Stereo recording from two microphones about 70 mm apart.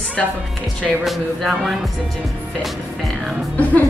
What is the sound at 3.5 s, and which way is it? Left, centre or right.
Speech, left.